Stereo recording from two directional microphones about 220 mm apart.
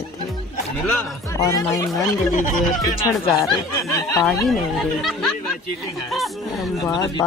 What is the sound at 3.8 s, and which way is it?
Speech, 15° left (ahead or behind).